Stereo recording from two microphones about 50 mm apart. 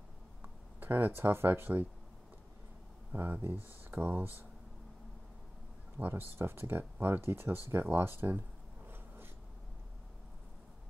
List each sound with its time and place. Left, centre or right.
0.4 s speech: right
3.1 s speech: right
5.9 s speech: right
6.3 s speech: right
8.8 s a sound: right